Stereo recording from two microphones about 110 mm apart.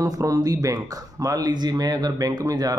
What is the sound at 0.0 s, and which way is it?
Speech, 30° right (ahead or behind).